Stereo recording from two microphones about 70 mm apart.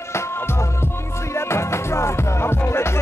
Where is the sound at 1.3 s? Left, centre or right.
Left.